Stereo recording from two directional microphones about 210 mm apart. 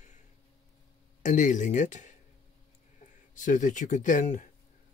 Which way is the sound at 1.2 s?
35° left (ahead or behind).